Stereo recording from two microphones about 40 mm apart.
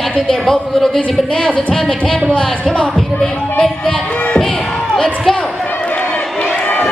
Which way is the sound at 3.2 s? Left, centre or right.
Centre.